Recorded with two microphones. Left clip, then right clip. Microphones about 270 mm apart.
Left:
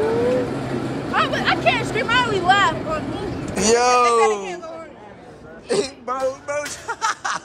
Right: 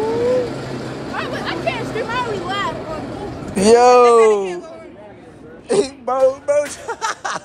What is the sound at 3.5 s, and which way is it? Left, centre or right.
Speech, centre.